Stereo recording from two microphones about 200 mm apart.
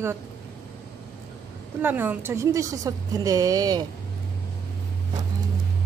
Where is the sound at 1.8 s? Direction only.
10° right (ahead or behind).